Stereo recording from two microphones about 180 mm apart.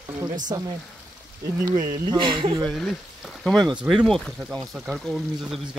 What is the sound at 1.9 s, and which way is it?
Speech, 25° right (ahead or behind).